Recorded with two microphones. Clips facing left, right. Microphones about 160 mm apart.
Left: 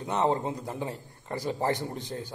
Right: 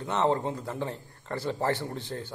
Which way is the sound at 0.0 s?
15° left (ahead or behind).